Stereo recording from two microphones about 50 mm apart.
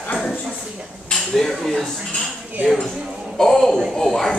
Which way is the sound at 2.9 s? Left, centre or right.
Centre.